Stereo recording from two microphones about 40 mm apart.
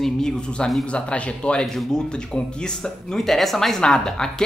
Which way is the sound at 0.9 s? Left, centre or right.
Left.